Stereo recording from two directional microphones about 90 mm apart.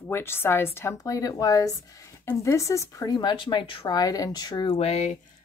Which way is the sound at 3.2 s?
60° left (ahead or behind).